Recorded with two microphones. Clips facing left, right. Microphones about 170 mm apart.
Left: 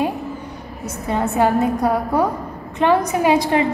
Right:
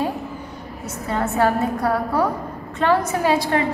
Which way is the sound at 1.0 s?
20° left (ahead or behind).